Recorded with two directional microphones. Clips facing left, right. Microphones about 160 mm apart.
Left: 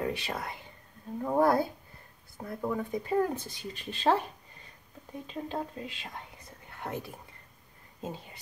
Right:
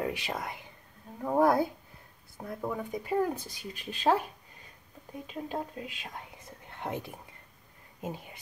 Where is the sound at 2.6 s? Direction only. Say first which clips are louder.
Left 3 dB; 10° right (ahead or behind).